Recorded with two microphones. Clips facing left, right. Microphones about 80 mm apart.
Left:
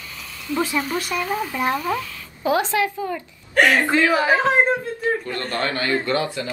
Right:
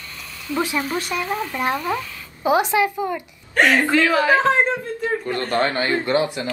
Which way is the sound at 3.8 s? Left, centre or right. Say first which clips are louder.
Right 1 dB; left.